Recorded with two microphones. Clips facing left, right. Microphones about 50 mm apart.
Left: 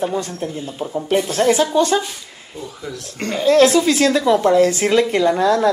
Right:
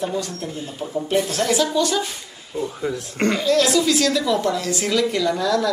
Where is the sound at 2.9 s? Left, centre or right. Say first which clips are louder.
Right 3 dB; right.